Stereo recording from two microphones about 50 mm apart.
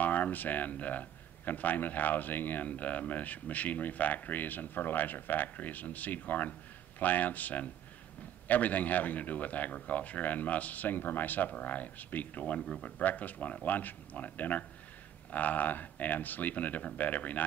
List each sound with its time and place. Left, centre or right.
0.0 s speech: left